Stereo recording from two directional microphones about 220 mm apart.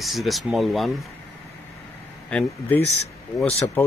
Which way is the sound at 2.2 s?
5° left (ahead or behind).